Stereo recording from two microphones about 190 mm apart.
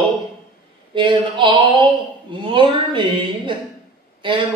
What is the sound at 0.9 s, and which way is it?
Speech, 25° right (ahead or behind).